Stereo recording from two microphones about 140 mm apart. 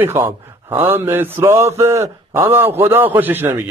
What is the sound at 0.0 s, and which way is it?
A man's voice, 15° right (ahead or behind).